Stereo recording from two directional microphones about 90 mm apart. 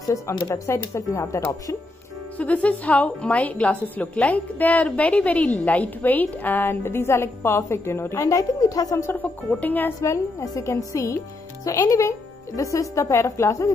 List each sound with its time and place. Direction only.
0.0 s a woman's voice: 40° left (ahead or behind)
2.3 s a woman's voice: 15° left (ahead or behind); by 9.1 s 35° left (ahead or behind)
9.1 s a woman's voice: 20° left (ahead or behind)
10.4 s speech: 35° left (ahead or behind)